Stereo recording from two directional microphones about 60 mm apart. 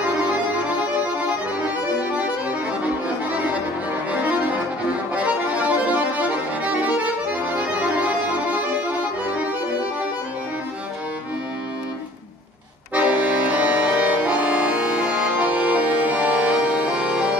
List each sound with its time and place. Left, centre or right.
4.1 s music: right
5.9 s accordion: right
12.9 s accordion: right
16.5 s music: centre